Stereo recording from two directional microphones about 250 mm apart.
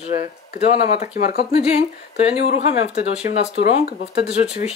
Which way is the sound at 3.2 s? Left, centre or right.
Left.